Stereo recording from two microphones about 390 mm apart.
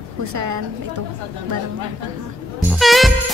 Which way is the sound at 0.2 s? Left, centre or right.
Right.